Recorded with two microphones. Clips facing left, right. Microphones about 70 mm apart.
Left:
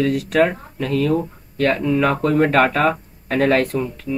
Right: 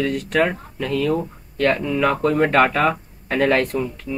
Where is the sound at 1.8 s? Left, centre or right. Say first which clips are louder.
Left 3 dB; left.